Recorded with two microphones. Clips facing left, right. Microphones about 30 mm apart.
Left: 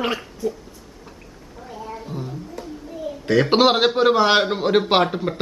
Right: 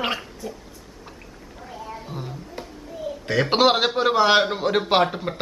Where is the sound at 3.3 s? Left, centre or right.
Centre.